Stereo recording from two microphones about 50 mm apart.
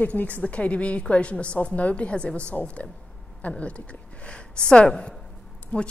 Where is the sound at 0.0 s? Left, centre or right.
Left.